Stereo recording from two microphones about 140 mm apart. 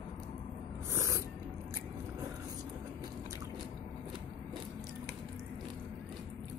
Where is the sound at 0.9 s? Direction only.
20° right (ahead or behind).